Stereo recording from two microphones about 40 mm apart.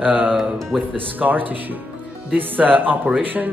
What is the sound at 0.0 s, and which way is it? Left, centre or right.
Speech, right.